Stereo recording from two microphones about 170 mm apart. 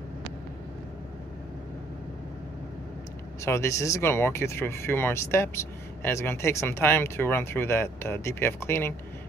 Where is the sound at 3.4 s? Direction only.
15° left (ahead or behind).